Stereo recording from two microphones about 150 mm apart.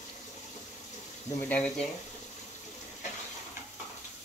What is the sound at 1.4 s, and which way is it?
Speech, 10° left (ahead or behind).